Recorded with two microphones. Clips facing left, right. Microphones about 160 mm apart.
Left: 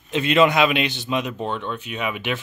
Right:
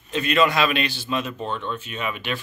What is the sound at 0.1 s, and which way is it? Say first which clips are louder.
A man's voice: left 3 dB; 20° left (ahead or behind).